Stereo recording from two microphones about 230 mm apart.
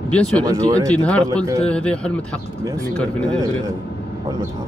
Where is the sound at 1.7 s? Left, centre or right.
Centre.